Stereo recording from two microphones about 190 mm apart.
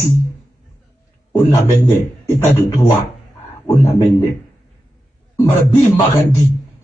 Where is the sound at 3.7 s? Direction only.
15° left (ahead or behind).